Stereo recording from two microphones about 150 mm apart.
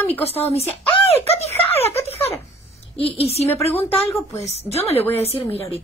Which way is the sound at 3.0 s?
40° left (ahead or behind).